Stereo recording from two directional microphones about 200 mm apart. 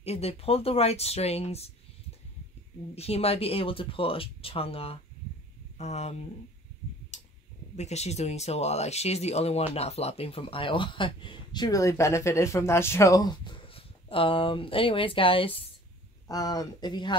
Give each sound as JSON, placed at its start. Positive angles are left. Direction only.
{"t": 0.0, "sound": "speech", "side_deg": 30}
{"t": 2.9, "sound": "speech", "side_deg": 30}
{"t": 7.7, "sound": "speech", "side_deg": 35}